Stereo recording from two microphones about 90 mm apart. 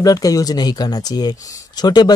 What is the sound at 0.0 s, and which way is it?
Speech, 40° left (ahead or behind).